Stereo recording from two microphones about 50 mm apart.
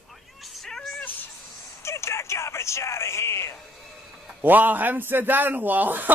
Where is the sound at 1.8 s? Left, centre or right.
Left.